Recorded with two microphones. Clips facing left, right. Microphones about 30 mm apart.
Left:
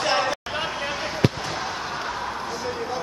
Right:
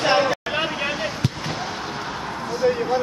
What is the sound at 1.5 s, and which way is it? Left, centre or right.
Basketball bounce, centre.